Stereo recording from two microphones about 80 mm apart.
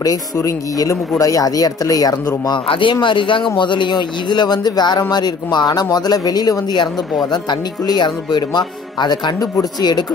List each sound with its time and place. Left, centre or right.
0.0 s speech: left
2.4 s speech: left
3.5 s speech: left